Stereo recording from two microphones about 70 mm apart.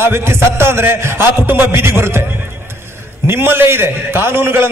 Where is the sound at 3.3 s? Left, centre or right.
Right.